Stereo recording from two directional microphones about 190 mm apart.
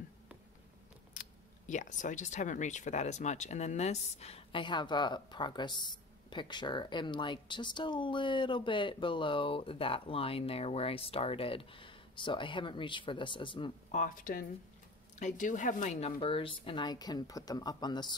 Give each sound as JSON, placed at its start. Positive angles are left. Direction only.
{"t": 1.1, "sound": "a sound", "side_deg": 40}
{"t": 1.7, "sound": "speech", "side_deg": 40}
{"t": 13.9, "sound": "speech", "side_deg": 45}